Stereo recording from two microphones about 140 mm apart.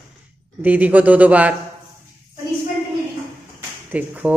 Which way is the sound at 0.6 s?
10° right (ahead or behind).